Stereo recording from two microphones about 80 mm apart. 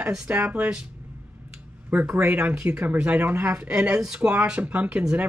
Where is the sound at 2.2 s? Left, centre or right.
Centre.